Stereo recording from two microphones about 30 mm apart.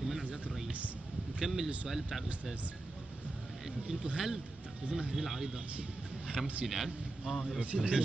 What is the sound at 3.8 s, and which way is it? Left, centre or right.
Speech, right.